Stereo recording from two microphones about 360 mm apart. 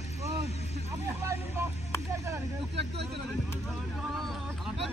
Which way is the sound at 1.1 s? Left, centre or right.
Centre.